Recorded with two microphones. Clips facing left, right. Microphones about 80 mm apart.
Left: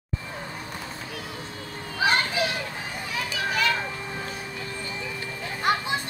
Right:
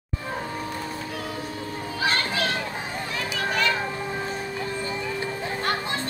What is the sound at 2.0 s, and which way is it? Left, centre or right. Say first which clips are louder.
Children playing: left 2 dB; centre.